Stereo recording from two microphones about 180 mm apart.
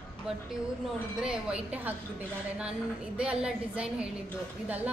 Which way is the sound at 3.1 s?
5° right (ahead or behind).